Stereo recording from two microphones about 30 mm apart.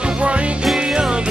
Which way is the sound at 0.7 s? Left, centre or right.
Right.